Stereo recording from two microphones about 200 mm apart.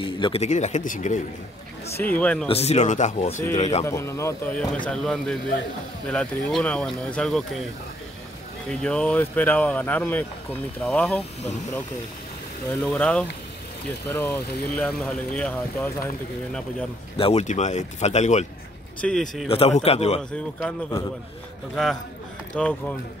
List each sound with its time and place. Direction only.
0.0 s speech: 25° left (ahead or behind)
2.0 s speech: 10° left (ahead or behind)
2.4 s speech: 30° left (ahead or behind)
3.8 s speech: 15° left (ahead or behind)
8.8 s speech: 5° left (ahead or behind)
12.8 s speech: 5° left (ahead or behind)
17.2 s speech: 30° left (ahead or behind)
18.9 s speech: 5° left (ahead or behind)
19.5 s a man's voice: 30° left (ahead or behind)
20.2 s speech: 5° left (ahead or behind)
22.5 s speech: 5° left (ahead or behind)